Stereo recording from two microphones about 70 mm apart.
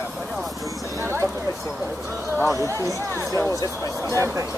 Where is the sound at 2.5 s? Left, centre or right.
Right.